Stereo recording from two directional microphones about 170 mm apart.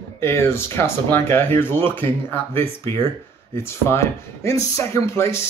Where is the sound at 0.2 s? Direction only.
15° left (ahead or behind).